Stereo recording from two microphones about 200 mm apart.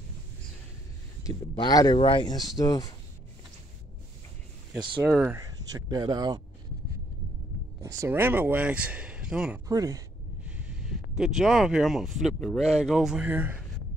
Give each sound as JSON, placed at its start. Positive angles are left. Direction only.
{"t": 1.5, "sound": "speech", "side_deg": 20}
{"t": 4.7, "sound": "speech", "side_deg": -25}
{"t": 5.0, "sound": "speech", "side_deg": -10}
{"t": 7.8, "sound": "speech", "side_deg": -15}
{"t": 9.7, "sound": "speech", "side_deg": -15}
{"t": 10.4, "sound": "speech", "side_deg": -5}